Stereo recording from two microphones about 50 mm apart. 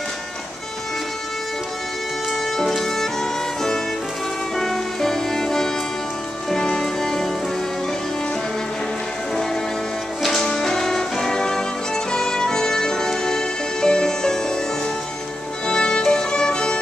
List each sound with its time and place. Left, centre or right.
2.5 s music: centre
9.3 s music: centre
15.6 s violin: centre